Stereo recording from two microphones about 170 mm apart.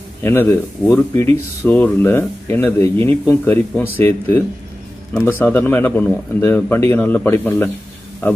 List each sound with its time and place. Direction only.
0.2 s speech: 15° left (ahead or behind)